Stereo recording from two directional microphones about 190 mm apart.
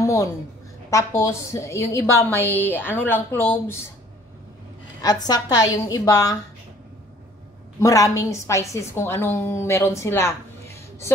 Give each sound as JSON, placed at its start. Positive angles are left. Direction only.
{"t": 0.0, "sound": "a sound", "side_deg": 15}
{"t": 0.8, "sound": "a woman's voice", "side_deg": 15}
{"t": 5.0, "sound": "a woman's voice", "side_deg": 20}
{"t": 7.8, "sound": "a woman's voice", "side_deg": 15}